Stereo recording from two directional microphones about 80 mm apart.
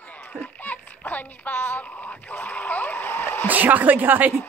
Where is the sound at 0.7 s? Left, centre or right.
Left.